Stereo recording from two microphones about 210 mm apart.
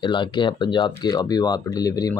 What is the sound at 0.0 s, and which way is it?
Speech, 20° left (ahead or behind).